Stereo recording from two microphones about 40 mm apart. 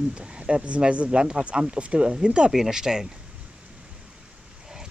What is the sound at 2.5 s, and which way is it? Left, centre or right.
Speech, centre.